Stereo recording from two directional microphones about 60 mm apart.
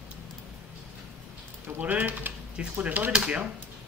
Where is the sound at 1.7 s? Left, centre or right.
Right.